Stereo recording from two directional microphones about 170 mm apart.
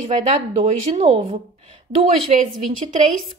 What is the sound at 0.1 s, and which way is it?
A woman's voice, 40° right (ahead or behind).